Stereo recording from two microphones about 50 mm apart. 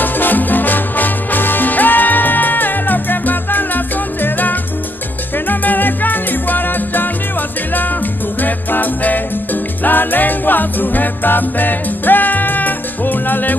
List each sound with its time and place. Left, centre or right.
0.0 s music: left
8.4 s music: left